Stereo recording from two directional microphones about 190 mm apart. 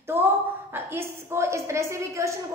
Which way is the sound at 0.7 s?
10° right (ahead or behind).